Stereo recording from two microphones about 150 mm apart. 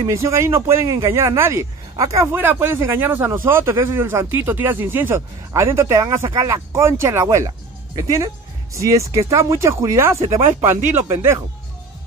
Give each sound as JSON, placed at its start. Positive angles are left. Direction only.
{"t": 0.0, "sound": "speech", "side_deg": -20}